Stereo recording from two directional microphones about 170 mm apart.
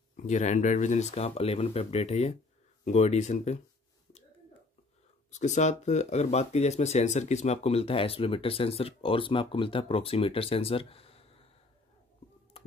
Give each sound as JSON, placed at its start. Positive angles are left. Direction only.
{"t": 0.3, "sound": "speech", "side_deg": 45}
{"t": 5.3, "sound": "speech", "side_deg": 45}